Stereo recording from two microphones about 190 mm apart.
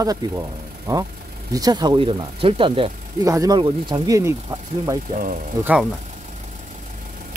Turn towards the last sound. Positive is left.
turn(degrees=-5)  # may be behind; listen again after turning